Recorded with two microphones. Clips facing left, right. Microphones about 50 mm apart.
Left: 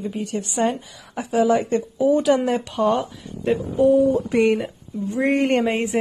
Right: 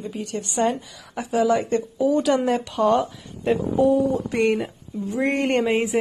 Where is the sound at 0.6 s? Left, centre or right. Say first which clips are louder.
Even; left.